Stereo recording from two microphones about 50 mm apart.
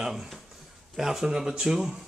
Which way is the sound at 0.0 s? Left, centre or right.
Centre.